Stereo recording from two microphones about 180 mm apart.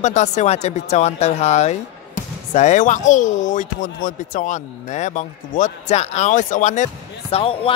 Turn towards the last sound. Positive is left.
turn(degrees=30)  # may be behind; listen again after turning